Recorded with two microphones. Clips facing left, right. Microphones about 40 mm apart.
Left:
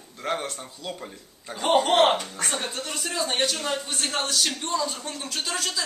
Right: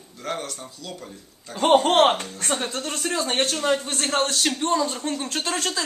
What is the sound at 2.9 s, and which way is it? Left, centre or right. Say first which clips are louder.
Speech: right 2 dB; right.